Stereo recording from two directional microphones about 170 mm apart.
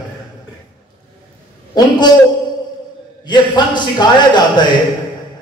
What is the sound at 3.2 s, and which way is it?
A man's voice, 25° left (ahead or behind).